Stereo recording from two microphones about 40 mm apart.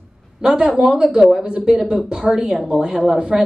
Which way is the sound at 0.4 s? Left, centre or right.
Centre.